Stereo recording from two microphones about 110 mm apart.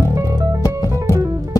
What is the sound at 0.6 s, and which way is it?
Music, 35° left (ahead or behind).